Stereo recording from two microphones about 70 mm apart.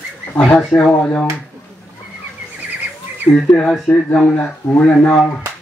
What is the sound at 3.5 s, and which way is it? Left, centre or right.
Speech, centre.